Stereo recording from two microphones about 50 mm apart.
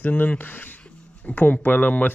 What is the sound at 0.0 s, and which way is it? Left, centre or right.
Speech, left.